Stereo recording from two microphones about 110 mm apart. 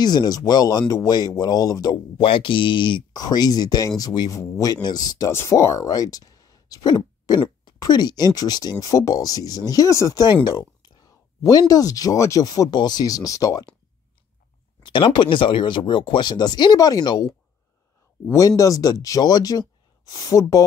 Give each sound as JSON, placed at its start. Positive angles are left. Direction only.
{"t": 0.0, "sound": "speech", "side_deg": 40}
{"t": 5.3, "sound": "speech", "side_deg": 25}
{"t": 14.8, "sound": "speech", "side_deg": 45}
{"t": 18.6, "sound": "speech", "side_deg": 30}